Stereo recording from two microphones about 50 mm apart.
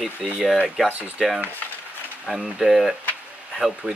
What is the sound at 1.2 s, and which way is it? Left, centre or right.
Speech, centre.